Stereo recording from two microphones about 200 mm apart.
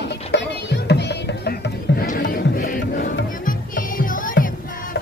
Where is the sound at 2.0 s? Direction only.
50° left (ahead or behind).